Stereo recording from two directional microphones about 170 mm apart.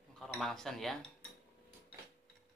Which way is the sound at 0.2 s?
5° left (ahead or behind).